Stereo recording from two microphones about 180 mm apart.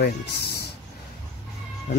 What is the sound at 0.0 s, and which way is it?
Speech, 65° left (ahead or behind).